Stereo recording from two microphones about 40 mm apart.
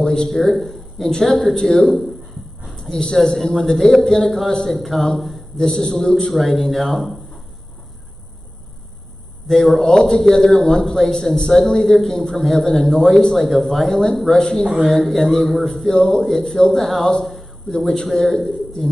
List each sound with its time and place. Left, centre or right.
0.0 s a sound: centre
0.3 s a man's voice: centre
6.3 s speech: centre
9.5 s a man's voice: centre
14.7 s a man's voice: centre
17.2 s a sound: centre
17.6 s a man's voice: centre